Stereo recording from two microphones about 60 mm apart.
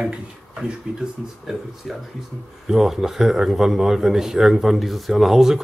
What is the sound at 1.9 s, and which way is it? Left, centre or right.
A man's voice, centre.